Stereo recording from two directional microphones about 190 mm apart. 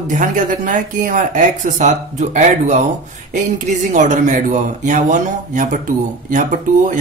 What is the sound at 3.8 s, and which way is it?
Speech, 40° right (ahead or behind).